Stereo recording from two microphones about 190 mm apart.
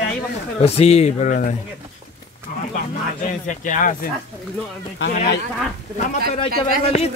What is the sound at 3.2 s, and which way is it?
Speech, 40° left (ahead or behind).